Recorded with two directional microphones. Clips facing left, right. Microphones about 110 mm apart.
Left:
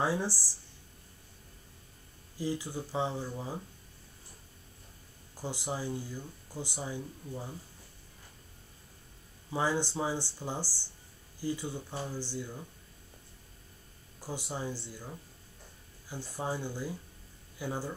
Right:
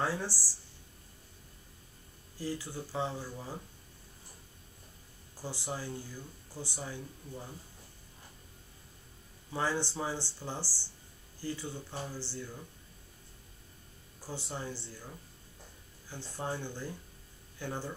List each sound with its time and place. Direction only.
0.0 s speech: 15° left (ahead or behind)
2.3 s speech: 15° left (ahead or behind)
5.3 s speech: 15° left (ahead or behind)
9.5 s speech: 15° left (ahead or behind)
14.2 s speech: 15° left (ahead or behind)